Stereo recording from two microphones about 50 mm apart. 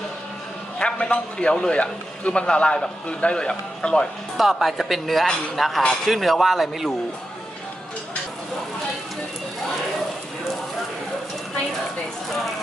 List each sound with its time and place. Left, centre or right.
0.7 s a man's voice: centre
4.4 s speech: centre